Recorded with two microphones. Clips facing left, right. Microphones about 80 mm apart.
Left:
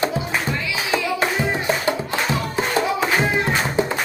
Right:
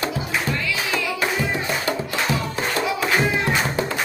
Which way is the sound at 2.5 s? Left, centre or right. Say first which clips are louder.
Left 3 dB; left.